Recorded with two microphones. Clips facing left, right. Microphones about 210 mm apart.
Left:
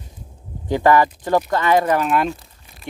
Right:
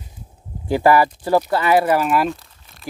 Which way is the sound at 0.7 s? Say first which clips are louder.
Even; 10° right (ahead or behind).